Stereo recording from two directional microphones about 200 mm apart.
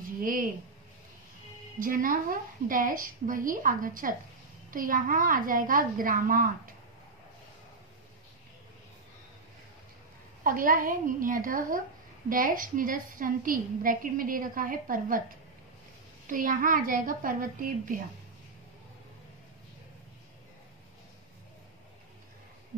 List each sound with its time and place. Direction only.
0.2 s speech: 45° right (ahead or behind)
1.8 s a woman's voice: 45° right (ahead or behind)
10.4 s a woman's voice: 45° right (ahead or behind)